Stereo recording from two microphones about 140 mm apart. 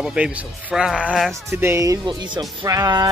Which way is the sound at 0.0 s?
5° right (ahead or behind).